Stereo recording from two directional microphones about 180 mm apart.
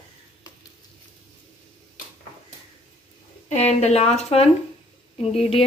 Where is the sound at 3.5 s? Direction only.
35° left (ahead or behind).